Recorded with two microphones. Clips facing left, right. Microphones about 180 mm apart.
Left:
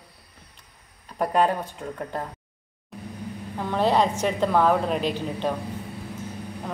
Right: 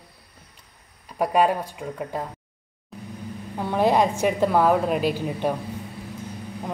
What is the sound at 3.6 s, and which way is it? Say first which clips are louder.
Speech: right 2 dB; 10° right (ahead or behind).